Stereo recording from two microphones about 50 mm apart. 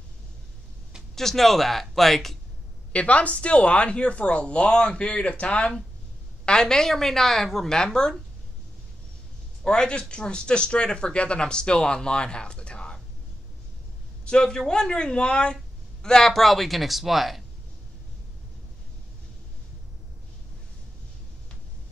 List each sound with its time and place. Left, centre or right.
1.1 s speech: centre
2.9 s a woman's voice: left
9.6 s speech: centre
14.2 s a woman's voice: centre